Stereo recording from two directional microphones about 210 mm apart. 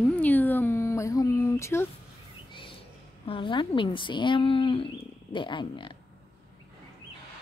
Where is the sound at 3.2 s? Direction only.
25° left (ahead or behind).